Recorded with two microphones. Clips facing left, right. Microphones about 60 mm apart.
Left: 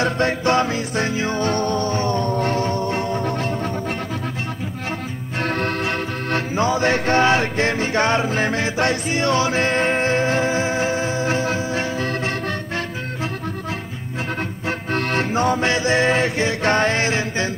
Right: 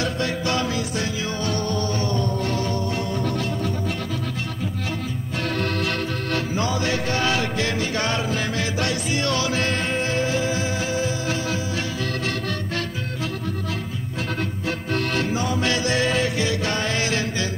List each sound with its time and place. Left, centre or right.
0.0 s music: left
5.4 s music: left
14.7 s music: left